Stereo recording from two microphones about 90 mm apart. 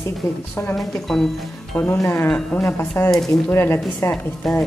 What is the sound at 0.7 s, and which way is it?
Speech, 5° left (ahead or behind).